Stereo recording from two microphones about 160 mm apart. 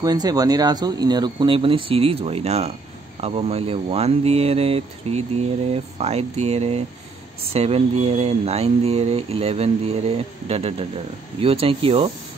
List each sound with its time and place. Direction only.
0.0 s speech: 25° right (ahead or behind)